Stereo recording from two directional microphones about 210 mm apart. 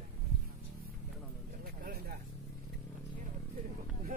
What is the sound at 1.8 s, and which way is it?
Vehicle, 45° right (ahead or behind).